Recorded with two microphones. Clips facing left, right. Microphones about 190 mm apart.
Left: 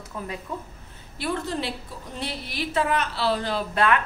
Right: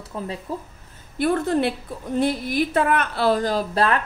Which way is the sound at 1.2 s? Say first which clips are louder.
Right 8 dB; 55° right (ahead or behind).